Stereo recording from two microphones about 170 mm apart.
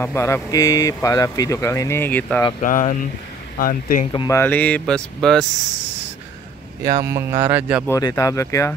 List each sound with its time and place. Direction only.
0.0 s speech: 15° left (ahead or behind)
2.6 s speech: 50° left (ahead or behind)
4.1 s speech: 25° left (ahead or behind)
4.4 s speech: 10° left (ahead or behind)
6.8 s speech: 20° right (ahead or behind)
7.8 s speech: 15° left (ahead or behind)